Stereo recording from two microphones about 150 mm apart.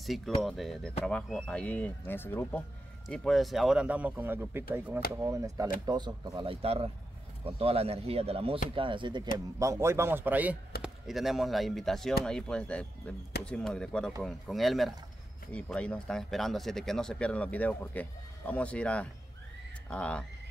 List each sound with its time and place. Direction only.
0.0 s speech: centre (ahead or behind)
3.1 s speech: centre (ahead or behind); by 9.3 s 30° right (ahead or behind)
9.6 s speech: 20° right (ahead or behind); by 20.2 s 5° left (ahead or behind)